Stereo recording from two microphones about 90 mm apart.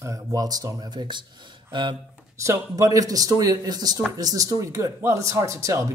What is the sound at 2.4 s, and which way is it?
Speech, 35° right (ahead or behind).